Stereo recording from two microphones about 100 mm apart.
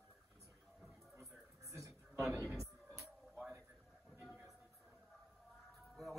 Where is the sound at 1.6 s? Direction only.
30° right (ahead or behind).